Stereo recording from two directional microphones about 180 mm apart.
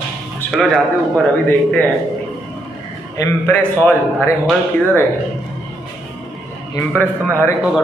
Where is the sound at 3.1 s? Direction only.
20° left (ahead or behind).